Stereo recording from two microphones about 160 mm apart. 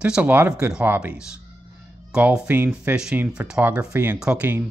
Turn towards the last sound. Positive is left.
turn(degrees=-10)  # may be behind; listen again after turning